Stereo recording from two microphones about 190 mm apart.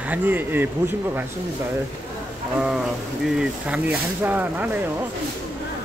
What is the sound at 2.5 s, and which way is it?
Speech, 5° right (ahead or behind).